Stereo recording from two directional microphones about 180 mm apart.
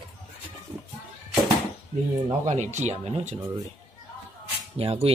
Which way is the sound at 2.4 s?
40° right (ahead or behind).